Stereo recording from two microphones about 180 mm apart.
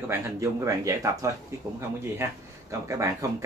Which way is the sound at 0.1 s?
15° right (ahead or behind).